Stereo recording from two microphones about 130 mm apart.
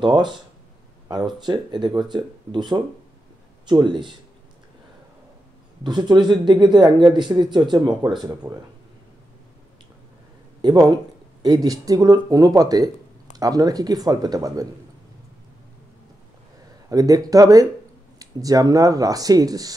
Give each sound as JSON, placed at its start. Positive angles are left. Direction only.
{"t": 0.0, "sound": "speech", "side_deg": -35}
{"t": 5.9, "sound": "speech", "side_deg": -35}
{"t": 10.6, "sound": "speech", "side_deg": -30}
{"t": 16.9, "sound": "speech", "side_deg": -25}